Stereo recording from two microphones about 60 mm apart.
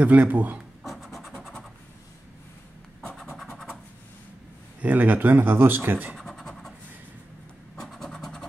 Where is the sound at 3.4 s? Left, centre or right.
Centre.